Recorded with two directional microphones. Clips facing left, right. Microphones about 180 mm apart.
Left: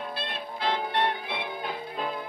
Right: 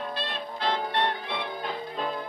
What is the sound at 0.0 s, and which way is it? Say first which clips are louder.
Music: right 2 dB; 5° left (ahead or behind).